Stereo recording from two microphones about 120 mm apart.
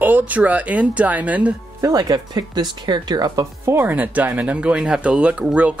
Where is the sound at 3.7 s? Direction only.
15° right (ahead or behind).